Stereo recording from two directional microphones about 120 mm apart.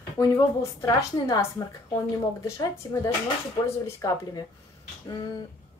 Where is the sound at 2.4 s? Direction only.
30° left (ahead or behind).